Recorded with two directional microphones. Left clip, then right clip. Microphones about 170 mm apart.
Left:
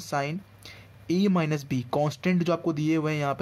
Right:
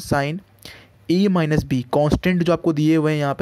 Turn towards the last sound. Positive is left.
turn(degrees=-35)  # may be behind; listen again after turning